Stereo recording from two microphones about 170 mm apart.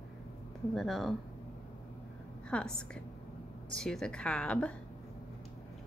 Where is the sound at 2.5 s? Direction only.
5° left (ahead or behind).